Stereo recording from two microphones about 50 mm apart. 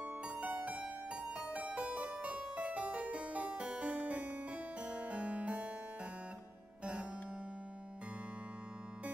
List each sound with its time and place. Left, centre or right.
0.0 s music: right
0.8 s music: centre
6.8 s music: right